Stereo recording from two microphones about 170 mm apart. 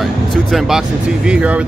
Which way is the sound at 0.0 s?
Centre (ahead or behind).